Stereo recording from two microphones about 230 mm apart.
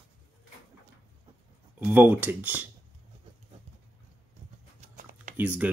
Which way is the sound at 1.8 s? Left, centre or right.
Centre.